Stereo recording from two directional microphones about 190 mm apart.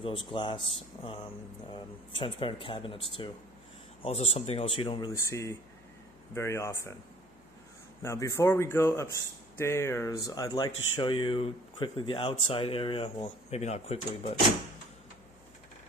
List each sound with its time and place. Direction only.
0.3 s a man's voice: 25° left (ahead or behind)
8.0 s a man's voice: 15° left (ahead or behind); by 14.3 s 35° left (ahead or behind)